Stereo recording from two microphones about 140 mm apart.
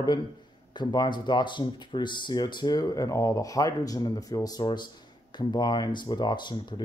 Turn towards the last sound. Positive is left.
turn(degrees=30)  # may be behind; listen again after turning